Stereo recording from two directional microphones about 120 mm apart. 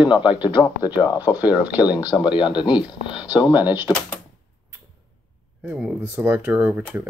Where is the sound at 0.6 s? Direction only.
35° left (ahead or behind).